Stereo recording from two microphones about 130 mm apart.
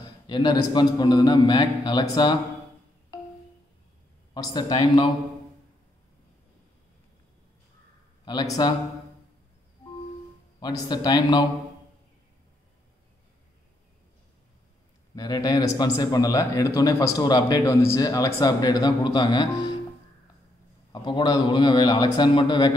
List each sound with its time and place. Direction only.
0.0 s a man's voice: 35° left (ahead or behind)
4.3 s a man's voice: 35° left (ahead or behind)
8.3 s a man's voice: 30° left (ahead or behind)
10.6 s a man's voice: 35° left (ahead or behind)
15.1 s a man's voice: 30° left (ahead or behind)
20.9 s a man's voice: 35° left (ahead or behind)